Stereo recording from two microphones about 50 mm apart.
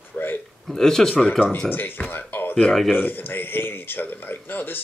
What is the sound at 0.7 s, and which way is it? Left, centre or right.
Speech, centre.